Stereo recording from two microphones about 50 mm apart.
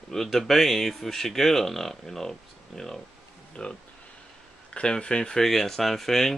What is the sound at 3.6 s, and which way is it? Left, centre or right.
Speech, centre.